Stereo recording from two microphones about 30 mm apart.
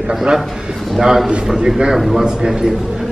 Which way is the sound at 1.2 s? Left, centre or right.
Right.